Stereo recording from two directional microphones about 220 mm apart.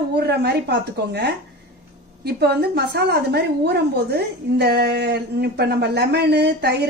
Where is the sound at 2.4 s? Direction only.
50° right (ahead or behind).